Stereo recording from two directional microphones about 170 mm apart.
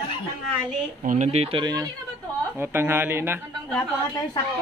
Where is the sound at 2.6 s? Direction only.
15° right (ahead or behind).